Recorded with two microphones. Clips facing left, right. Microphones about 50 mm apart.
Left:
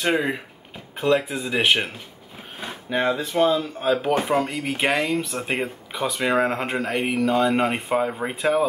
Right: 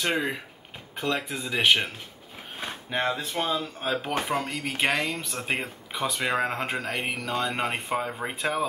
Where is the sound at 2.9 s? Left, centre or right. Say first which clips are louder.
Left 5 dB; centre.